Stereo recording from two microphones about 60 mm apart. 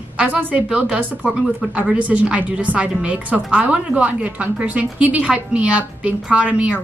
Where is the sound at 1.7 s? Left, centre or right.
Right.